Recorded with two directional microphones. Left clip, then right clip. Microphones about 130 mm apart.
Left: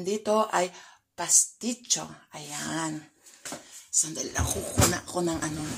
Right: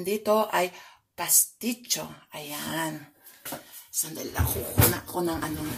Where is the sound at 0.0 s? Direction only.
Centre (ahead or behind).